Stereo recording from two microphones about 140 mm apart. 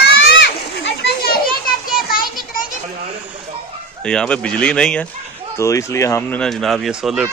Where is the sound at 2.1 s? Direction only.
90° left.